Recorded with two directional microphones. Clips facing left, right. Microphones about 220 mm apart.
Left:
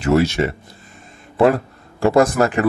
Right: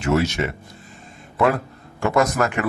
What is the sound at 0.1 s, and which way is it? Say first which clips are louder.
A man's voice: left 4 dB; 35° left (ahead or behind).